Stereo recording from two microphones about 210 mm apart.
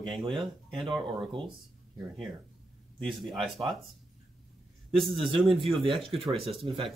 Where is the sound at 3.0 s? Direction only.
Centre (ahead or behind).